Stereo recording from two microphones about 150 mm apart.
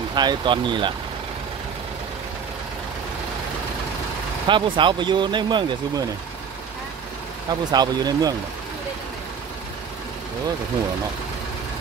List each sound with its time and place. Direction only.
0.1 s speech: 30° right (ahead or behind)
4.5 s speech: 35° right (ahead or behind)
7.4 s speech: 25° right (ahead or behind)